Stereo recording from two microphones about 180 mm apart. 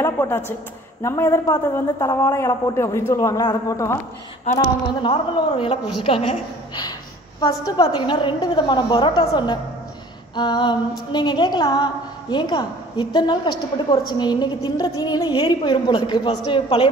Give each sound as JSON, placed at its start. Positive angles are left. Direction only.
{"t": 0.0, "sound": "a man's voice", "side_deg": 15}
{"t": 5.0, "sound": "a woman's voice", "side_deg": 30}